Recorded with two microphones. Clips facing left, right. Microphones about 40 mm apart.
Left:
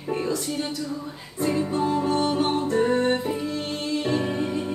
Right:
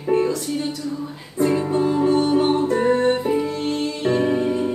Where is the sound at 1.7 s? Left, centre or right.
Centre.